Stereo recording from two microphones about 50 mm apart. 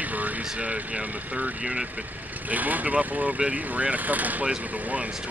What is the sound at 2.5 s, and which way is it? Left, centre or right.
Speech, right.